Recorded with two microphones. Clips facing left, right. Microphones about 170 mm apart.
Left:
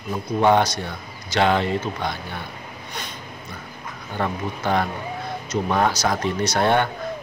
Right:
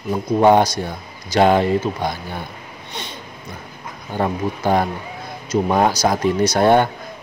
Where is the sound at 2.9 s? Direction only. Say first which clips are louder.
Right 3 dB; 25° right (ahead or behind).